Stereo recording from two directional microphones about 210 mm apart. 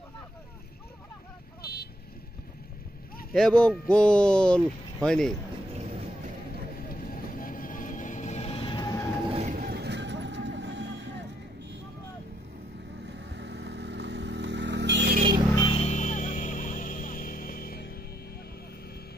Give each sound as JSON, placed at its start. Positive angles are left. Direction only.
{"t": 1.6, "sound": "vehicle", "side_deg": 50}
{"t": 3.3, "sound": "speech", "side_deg": 5}
{"t": 6.9, "sound": "vehicle", "side_deg": 40}
{"t": 9.3, "sound": "vehicle", "side_deg": -35}
{"t": 13.0, "sound": "vehicle", "side_deg": -55}
{"t": 15.5, "sound": "music", "side_deg": 20}